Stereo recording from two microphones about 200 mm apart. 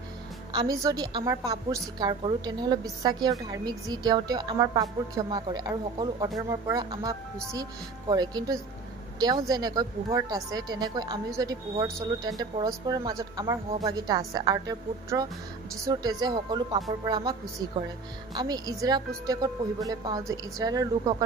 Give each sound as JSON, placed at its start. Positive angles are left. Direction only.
{"t": 0.5, "sound": "a woman's voice", "side_deg": -20}